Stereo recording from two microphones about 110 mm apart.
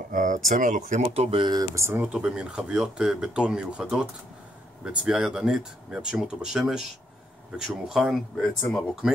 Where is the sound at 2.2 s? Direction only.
5° right (ahead or behind).